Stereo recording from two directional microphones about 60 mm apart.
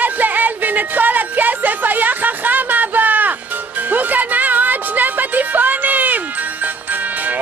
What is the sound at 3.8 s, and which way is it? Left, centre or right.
Music, right.